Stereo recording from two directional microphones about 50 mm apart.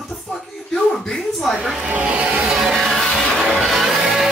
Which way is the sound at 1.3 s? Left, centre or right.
Centre.